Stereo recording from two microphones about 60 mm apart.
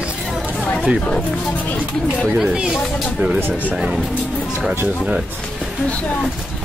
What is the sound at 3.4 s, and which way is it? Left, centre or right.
Speech, right.